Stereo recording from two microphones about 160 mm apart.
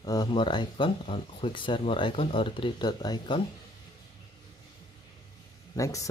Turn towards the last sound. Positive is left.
turn(degrees=20)  # may be behind; listen again after turning